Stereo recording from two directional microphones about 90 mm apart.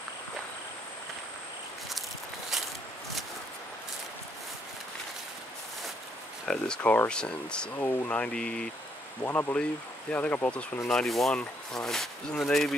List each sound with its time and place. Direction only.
2.5 s a sound: centre (ahead or behind)
6.4 s speech: 10° left (ahead or behind)
9.2 s speech: 25° left (ahead or behind)
10.9 s speech: 5° left (ahead or behind)